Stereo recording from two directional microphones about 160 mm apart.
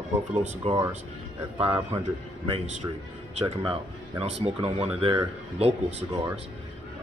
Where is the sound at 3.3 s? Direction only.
35° right (ahead or behind).